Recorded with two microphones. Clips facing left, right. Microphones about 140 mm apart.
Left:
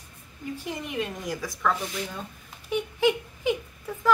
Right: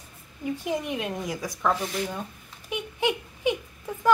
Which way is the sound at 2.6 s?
15° right (ahead or behind).